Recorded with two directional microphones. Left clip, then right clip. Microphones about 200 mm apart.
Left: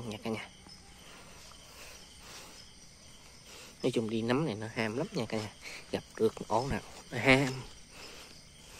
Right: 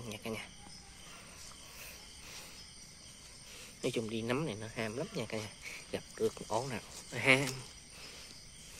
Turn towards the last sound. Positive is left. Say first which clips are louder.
# left 3 dB
turn(degrees=30)  # may be behind; listen again after turning